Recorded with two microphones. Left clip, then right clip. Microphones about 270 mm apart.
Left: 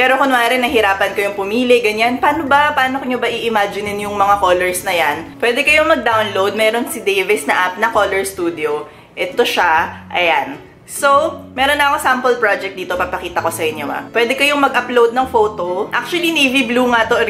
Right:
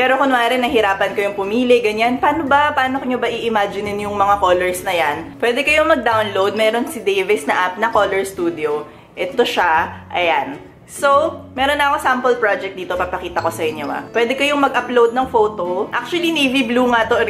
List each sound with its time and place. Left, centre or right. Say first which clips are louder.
0.0 s a woman's voice: left 2 dB; centre
11.5 s a woman's voice: left 3 dB; centre
15.3 s speech: left 1 dB; right
16.1 s a woman's voice: left 3 dB; centre